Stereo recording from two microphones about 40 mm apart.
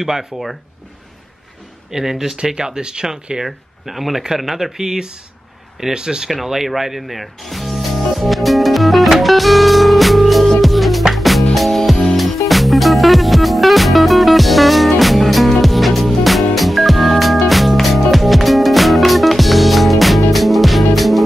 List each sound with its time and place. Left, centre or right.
0.0 s speech: centre
1.9 s speech: centre
3.4 s speech: centre
6.4 s music: centre